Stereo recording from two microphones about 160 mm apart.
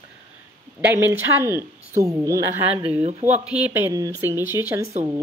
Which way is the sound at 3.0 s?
45° right (ahead or behind).